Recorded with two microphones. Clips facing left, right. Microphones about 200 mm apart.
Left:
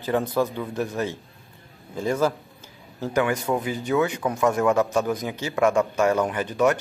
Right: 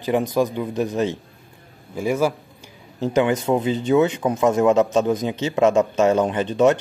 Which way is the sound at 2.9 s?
20° right (ahead or behind).